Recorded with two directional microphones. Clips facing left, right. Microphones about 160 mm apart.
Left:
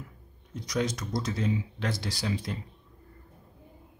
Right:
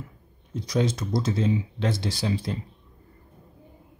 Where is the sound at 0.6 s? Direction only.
30° right (ahead or behind).